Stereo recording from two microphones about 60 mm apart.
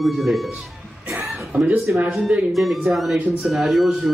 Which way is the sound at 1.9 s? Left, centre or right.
Right.